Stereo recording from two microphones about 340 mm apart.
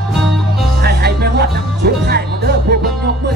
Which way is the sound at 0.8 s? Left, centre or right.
Right.